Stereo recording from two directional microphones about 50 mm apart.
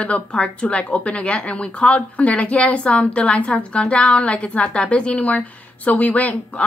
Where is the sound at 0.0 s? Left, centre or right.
Left.